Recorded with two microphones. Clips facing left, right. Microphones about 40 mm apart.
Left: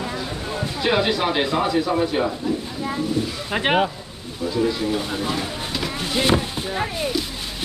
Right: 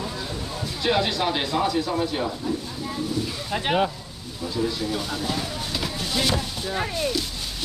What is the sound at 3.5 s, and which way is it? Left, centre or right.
Speech, left.